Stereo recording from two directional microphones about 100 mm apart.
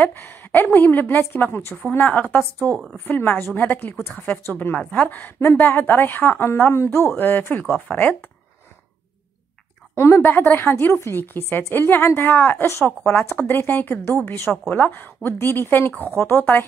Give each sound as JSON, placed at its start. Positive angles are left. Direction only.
{"t": 0.0, "sound": "a woman's voice", "side_deg": 20}
{"t": 9.9, "sound": "a woman's voice", "side_deg": 25}